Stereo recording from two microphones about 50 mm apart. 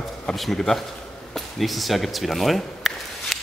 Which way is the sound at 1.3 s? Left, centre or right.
Centre.